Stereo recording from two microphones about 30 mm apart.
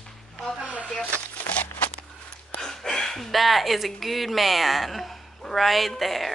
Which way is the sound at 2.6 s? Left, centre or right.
Centre.